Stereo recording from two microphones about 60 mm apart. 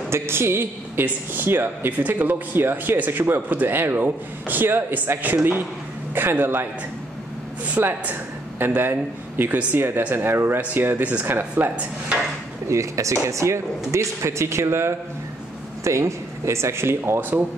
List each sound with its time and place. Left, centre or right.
0.1 s speech: right
7.6 s speech: right
10.6 s dishes: right
12.6 s speech: right